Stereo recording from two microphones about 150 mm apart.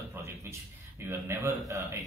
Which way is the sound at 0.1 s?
20° right (ahead or behind).